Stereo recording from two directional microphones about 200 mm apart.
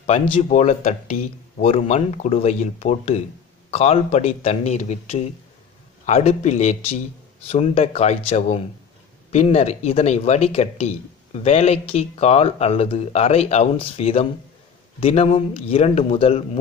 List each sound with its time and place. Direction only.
0.0 s speech: 35° left (ahead or behind)